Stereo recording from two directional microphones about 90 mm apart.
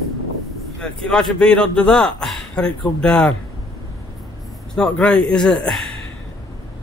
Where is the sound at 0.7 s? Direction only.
10° left (ahead or behind).